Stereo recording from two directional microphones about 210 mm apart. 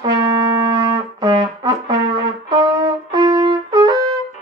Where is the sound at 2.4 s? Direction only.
20° right (ahead or behind).